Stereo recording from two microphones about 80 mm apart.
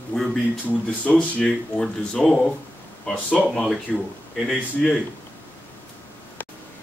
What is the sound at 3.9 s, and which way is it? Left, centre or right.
Speech, centre.